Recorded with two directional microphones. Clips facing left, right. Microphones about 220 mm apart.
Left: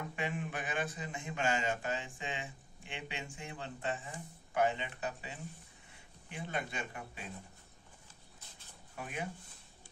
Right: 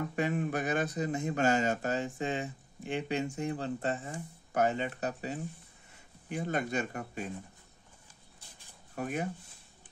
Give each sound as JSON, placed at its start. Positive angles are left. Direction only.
{"t": 0.1, "sound": "a man's voice", "side_deg": -40}
{"t": 8.9, "sound": "speech", "side_deg": -45}